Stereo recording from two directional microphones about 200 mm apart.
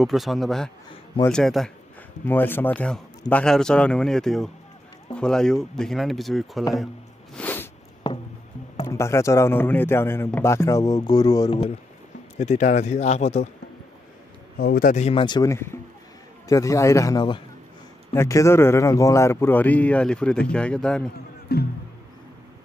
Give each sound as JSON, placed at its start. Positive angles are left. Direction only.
{"t": 0.0, "sound": "speech", "side_deg": 0}
{"t": 7.3, "sound": "a sound", "side_deg": 10}
{"t": 8.8, "sound": "speech", "side_deg": 15}
{"t": 12.4, "sound": "speech", "side_deg": 35}
{"t": 14.6, "sound": "speech", "side_deg": 50}
{"t": 21.5, "sound": "speech", "side_deg": 50}